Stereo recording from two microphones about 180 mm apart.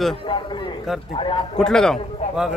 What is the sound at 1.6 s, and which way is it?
Speech, 5° left (ahead or behind).